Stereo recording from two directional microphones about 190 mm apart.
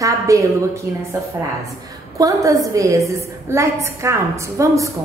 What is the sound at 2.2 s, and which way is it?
A woman's voice, 15° right (ahead or behind).